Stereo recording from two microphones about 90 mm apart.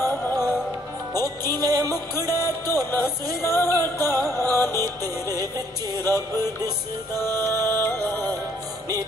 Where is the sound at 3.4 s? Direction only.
30° left (ahead or behind).